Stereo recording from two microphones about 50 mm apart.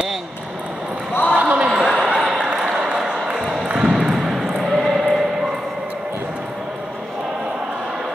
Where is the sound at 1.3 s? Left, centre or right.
Right.